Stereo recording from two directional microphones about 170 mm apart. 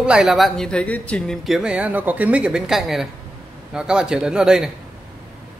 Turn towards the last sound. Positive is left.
turn(degrees=-5)  # may be behind; listen again after turning